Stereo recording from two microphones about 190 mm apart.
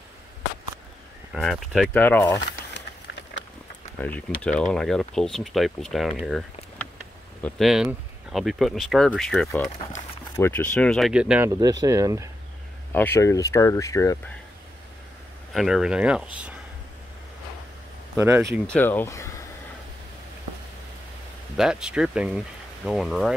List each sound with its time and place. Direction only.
1.3 s speech: centre (ahead or behind)
2.0 s speech: 10° left (ahead or behind)
2.7 s a sound: 65° left (ahead or behind)
4.0 s speech: 10° left (ahead or behind)
10.3 s speech: 10° left (ahead or behind); by 11.5 s 5° right (ahead or behind)
11.8 s speech: 20° right (ahead or behind)
12.9 s speech: 10° left (ahead or behind)
15.5 s speech: centre (ahead or behind)
18.1 s speech: 15° right (ahead or behind)
18.7 s speech: 10° left (ahead or behind)
21.5 s speech: 5° right (ahead or behind)